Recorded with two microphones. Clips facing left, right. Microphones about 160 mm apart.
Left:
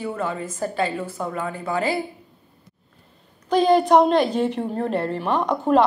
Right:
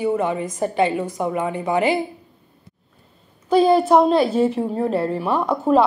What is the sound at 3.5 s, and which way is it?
A woman's voice, 5° right (ahead or behind).